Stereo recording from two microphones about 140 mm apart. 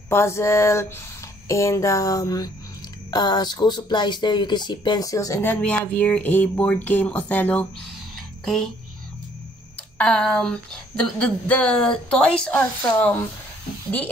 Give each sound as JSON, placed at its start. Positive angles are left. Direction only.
{"t": 0.1, "sound": "speech", "side_deg": 20}
{"t": 9.9, "sound": "speech", "side_deg": 5}